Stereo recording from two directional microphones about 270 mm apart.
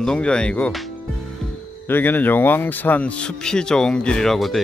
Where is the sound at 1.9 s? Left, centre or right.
Centre.